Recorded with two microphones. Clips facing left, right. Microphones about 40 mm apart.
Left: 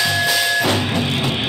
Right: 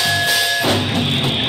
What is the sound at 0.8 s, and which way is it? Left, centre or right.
Music, right.